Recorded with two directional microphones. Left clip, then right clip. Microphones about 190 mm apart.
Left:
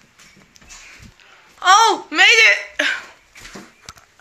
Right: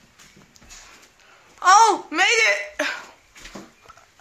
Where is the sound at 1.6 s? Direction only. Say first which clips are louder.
Left 2 dB; centre (ahead or behind).